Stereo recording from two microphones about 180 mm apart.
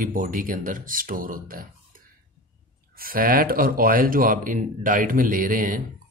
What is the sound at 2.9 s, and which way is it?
Speech, 55° right (ahead or behind).